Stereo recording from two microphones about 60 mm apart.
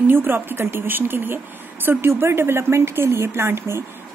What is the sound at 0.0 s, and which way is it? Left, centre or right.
Speech, right.